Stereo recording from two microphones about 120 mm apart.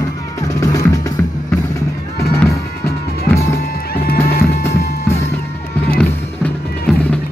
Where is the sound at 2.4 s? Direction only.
20° left (ahead or behind).